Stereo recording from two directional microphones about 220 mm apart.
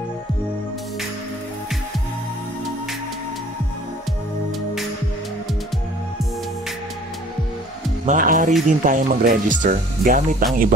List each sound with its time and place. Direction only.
8.1 s speech: 40° right (ahead or behind)